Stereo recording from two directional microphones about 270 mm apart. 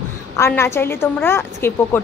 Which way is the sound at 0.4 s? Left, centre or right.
Centre.